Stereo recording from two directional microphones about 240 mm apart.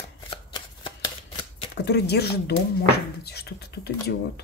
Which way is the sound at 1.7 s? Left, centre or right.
Left.